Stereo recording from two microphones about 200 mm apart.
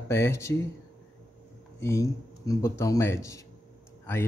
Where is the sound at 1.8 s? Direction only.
15° left (ahead or behind).